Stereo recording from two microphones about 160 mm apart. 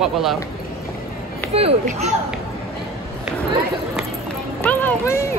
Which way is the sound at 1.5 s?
40° right (ahead or behind).